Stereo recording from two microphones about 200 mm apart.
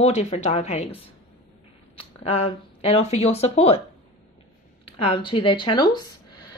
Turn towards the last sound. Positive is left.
turn(degrees=20)  # may be behind; listen again after turning